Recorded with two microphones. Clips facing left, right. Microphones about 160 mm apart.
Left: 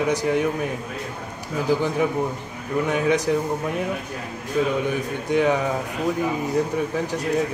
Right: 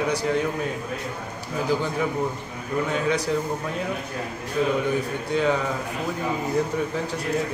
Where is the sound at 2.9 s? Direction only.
20° left (ahead or behind).